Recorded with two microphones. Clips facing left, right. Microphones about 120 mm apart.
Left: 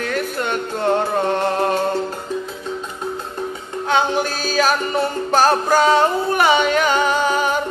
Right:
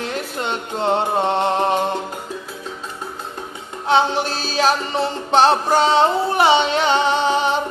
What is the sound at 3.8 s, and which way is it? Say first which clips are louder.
Music: right 1 dB; 30° right (ahead or behind).